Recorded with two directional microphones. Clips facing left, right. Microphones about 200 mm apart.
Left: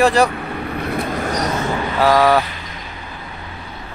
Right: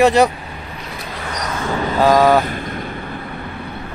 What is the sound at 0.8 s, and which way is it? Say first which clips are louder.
Vehicle: left 9 dB; 55° left (ahead or behind).